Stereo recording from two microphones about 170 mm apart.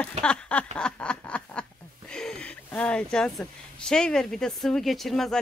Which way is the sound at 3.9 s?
5° left (ahead or behind).